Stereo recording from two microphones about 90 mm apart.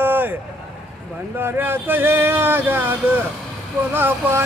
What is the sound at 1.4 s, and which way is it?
Mantra, 25° right (ahead or behind).